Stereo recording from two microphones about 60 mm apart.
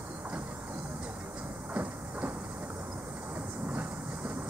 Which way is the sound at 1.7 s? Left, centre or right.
Right.